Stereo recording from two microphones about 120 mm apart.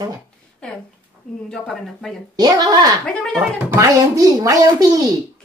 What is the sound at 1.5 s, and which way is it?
Speech, centre (ahead or behind).